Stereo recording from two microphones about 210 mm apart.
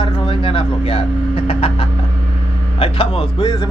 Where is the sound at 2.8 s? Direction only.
25° left (ahead or behind).